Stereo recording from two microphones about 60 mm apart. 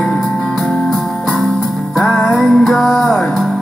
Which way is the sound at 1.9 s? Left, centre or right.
Centre.